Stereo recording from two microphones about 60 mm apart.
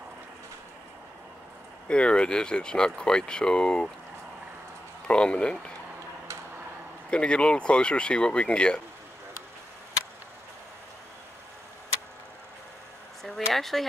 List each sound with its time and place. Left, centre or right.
1.9 s speech: centre
5.0 s speech: centre
7.1 s speech: centre
13.2 s a sound: centre